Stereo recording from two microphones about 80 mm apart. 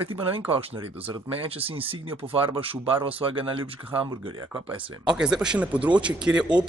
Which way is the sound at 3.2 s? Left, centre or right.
Right.